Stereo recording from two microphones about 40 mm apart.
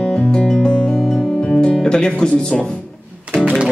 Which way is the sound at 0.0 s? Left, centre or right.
Left.